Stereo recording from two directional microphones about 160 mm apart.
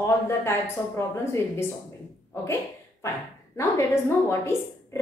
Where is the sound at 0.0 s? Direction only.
15° left (ahead or behind).